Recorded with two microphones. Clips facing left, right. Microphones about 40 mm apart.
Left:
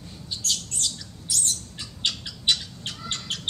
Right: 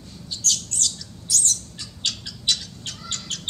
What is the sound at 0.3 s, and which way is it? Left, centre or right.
Squawk, centre.